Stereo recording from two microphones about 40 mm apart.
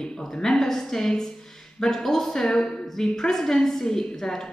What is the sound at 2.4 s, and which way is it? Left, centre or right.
Speech, left.